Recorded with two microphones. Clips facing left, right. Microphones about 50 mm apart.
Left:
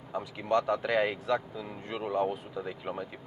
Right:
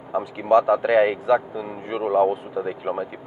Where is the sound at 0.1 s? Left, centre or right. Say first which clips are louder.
Right 11 dB; centre.